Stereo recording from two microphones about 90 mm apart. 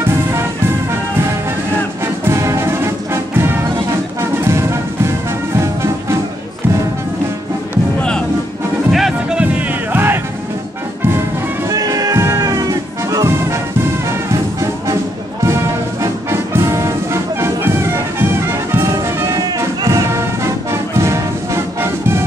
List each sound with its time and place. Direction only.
2.2 s music: 30° right (ahead or behind)
8.9 s music: 5° right (ahead or behind)
9.4 s music: 20° right (ahead or behind)
11.7 s music: 45° right (ahead or behind)
20.9 s brass instrument: 30° right (ahead or behind)